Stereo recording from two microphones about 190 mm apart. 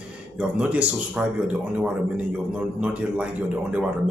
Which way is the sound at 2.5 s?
5° right (ahead or behind).